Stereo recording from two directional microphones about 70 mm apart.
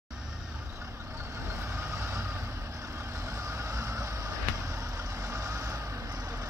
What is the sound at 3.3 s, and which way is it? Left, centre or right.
Vehicle, right.